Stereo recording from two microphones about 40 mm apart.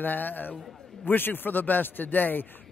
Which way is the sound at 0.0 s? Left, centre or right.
Left.